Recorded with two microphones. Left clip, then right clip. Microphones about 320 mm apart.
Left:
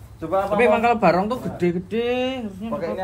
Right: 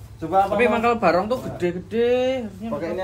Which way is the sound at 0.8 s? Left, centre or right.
Left.